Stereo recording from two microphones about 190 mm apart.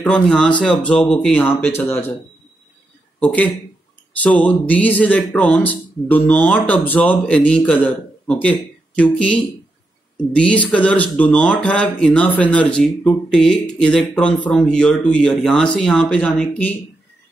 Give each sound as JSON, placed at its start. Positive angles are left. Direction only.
{"t": 0.0, "sound": "speech", "side_deg": 5}
{"t": 3.2, "sound": "a man's voice", "side_deg": 10}